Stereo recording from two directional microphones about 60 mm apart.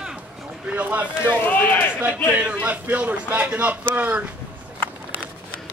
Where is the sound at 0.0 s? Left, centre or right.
Centre.